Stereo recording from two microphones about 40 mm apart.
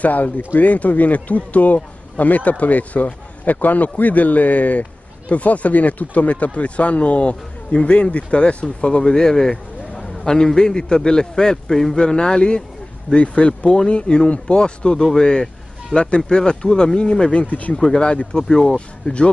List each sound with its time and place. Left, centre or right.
0.0 s a man's voice: left
17.7 s a man's voice: centre